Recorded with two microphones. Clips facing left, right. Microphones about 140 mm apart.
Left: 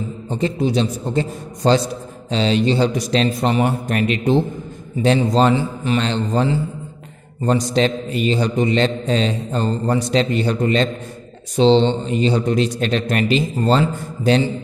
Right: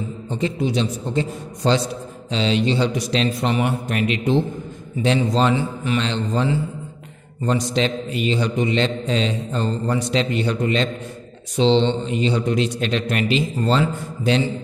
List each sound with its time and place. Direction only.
0.3 s a man's voice: 40° left (ahead or behind)